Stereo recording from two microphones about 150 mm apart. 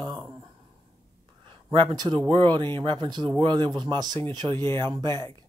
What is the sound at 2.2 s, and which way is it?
Speech, 30° right (ahead or behind).